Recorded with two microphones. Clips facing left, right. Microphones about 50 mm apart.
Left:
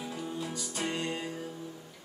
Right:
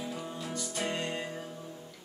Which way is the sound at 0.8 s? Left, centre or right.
Centre.